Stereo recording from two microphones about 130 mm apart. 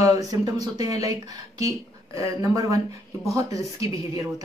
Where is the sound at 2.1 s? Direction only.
25° right (ahead or behind).